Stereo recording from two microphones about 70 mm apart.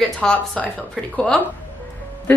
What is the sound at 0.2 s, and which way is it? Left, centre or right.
A woman's voice, centre.